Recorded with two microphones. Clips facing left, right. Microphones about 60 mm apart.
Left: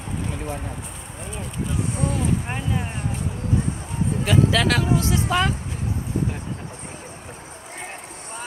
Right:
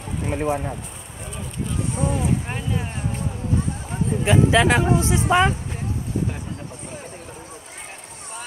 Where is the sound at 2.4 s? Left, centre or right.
Centre.